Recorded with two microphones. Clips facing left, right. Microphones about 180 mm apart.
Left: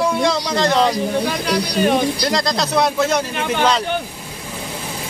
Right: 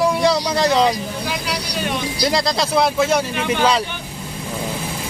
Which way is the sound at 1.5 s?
50° left (ahead or behind).